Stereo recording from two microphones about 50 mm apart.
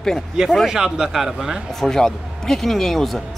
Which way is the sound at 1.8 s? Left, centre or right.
Centre.